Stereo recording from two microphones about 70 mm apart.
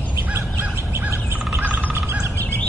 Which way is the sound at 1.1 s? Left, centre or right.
Right.